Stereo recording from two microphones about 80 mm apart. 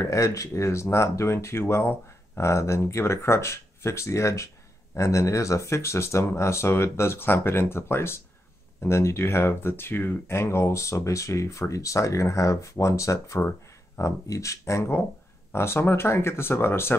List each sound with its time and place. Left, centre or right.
0.0 s speech: left